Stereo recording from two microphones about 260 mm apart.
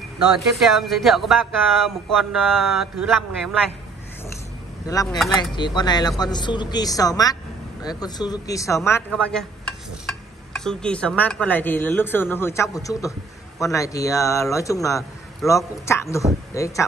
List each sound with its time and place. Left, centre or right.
0.6 s speech: centre
4.8 s a man's voice: centre